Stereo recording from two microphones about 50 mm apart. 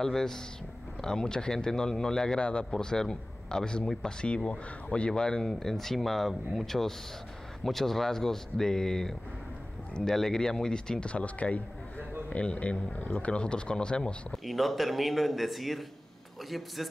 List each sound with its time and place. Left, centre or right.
0.0 s speech: centre
14.3 s speech: centre